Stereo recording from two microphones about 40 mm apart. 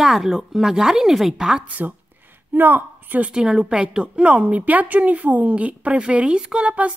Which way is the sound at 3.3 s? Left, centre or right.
Centre.